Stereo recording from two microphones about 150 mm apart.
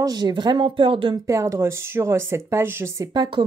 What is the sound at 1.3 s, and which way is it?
Speech, 20° right (ahead or behind).